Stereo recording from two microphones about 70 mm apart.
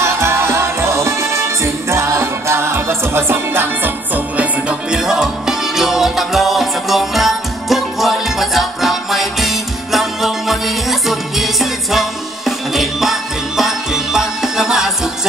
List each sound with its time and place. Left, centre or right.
0.0 s music: right
4.9 s music: centre